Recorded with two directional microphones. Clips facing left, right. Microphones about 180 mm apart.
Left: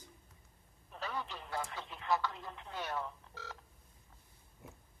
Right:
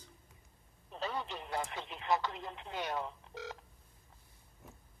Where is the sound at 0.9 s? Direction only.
25° right (ahead or behind).